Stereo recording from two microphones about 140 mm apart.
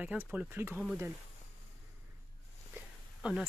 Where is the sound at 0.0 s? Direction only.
10° right (ahead or behind).